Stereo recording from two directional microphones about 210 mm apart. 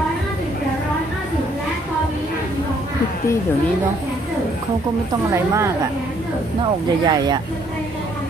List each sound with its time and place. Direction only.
5.3 s a woman's voice: 15° right (ahead or behind)
7.1 s speech: 20° right (ahead or behind)